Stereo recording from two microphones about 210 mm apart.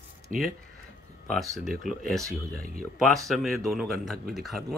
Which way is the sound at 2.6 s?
45° right (ahead or behind).